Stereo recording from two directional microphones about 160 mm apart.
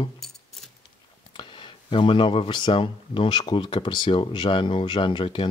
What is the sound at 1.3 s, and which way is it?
Speech, 30° left (ahead or behind).